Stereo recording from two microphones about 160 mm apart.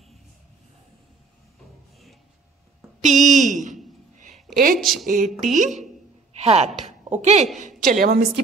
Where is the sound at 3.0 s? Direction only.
50° right (ahead or behind).